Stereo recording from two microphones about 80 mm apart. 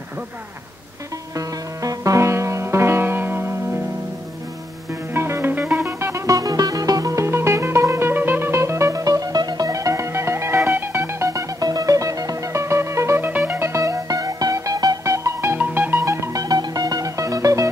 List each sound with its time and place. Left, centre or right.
1.3 s music: right
5.1 s music: right
13.3 s music: right
15.5 s music: right
16.0 s music: right